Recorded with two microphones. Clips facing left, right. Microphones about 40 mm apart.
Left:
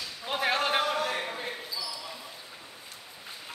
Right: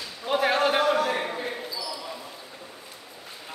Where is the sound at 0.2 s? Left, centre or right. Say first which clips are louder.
Right 5 dB; centre.